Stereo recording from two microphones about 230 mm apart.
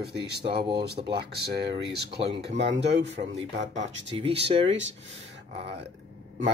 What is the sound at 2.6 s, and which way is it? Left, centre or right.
Speech, right.